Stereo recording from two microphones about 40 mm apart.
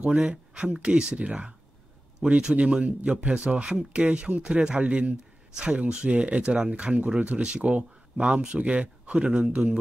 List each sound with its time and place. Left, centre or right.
0.0 s speech: right